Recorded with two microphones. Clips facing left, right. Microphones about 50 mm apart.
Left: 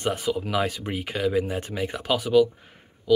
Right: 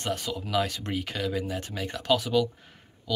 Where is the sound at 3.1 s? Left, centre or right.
Centre.